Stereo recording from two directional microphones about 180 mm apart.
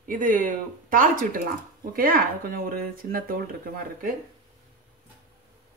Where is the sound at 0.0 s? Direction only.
50° right (ahead or behind).